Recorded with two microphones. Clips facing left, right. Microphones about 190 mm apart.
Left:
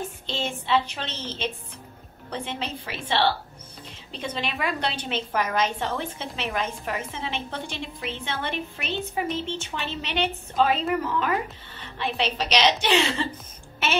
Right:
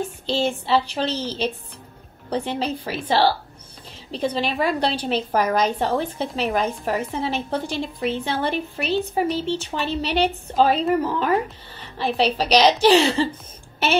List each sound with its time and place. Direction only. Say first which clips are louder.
0.5 s a woman's voice: right 4 dB; 35° right (ahead or behind)